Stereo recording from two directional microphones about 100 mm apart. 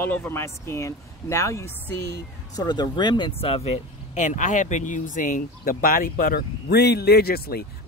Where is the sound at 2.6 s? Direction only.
45° left (ahead or behind).